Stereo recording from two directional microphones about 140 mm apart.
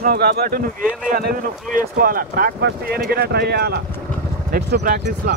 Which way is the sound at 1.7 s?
90° right.